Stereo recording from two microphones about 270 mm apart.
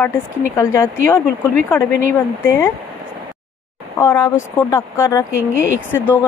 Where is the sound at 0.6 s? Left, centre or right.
Centre.